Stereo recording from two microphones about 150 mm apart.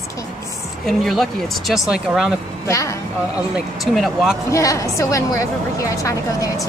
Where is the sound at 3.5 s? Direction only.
Centre (ahead or behind).